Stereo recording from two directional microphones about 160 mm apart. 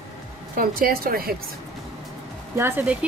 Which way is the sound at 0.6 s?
65° right (ahead or behind).